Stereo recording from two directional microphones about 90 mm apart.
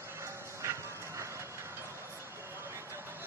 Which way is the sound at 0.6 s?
35° right (ahead or behind).